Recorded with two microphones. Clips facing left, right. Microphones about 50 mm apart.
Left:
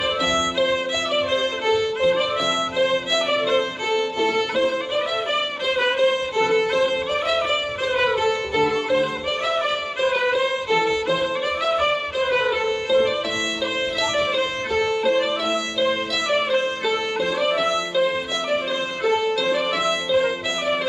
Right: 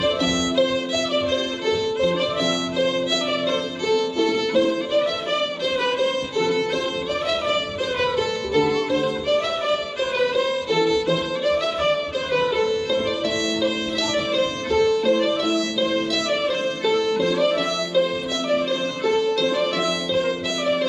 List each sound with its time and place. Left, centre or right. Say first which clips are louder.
0.0 s music: even; centre
14.1 s music: even; centre